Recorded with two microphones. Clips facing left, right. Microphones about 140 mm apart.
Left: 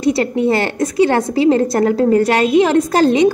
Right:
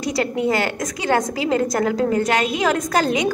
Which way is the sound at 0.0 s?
30° left (ahead or behind).